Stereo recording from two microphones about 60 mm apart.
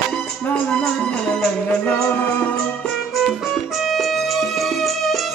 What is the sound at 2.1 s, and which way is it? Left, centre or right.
Music, left.